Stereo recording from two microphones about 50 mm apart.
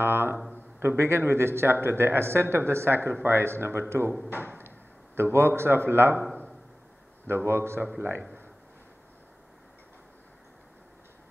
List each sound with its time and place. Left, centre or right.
0.0 s a sound: right
0.7 s a man's voice: right
4.3 s drawer open or close: right
5.6 s a man's voice: right
7.2 s a man's voice: right